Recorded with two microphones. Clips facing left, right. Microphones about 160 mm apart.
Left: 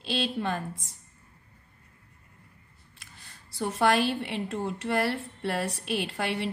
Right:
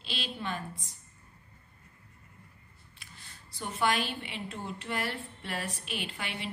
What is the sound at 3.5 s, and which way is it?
A woman's voice, 90° left.